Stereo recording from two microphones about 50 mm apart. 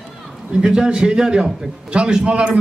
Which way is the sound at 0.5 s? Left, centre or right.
Centre.